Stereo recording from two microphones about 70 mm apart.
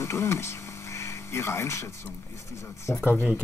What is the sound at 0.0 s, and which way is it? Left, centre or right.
Speech, left.